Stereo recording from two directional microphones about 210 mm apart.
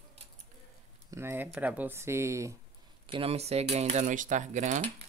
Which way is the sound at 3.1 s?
25° right (ahead or behind).